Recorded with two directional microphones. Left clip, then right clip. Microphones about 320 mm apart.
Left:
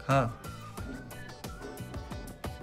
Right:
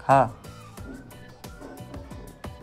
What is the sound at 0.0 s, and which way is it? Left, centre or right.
Speech, centre.